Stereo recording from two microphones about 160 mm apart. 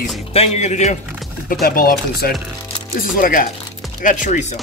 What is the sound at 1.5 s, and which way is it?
Speech, 65° left (ahead or behind).